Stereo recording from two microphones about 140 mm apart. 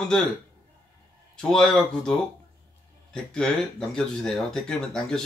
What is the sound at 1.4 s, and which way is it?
Speech, centre (ahead or behind).